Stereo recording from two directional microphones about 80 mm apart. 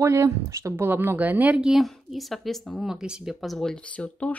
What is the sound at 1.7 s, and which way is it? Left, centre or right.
Speech, centre.